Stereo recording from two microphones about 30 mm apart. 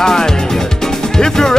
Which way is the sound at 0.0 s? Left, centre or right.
Centre.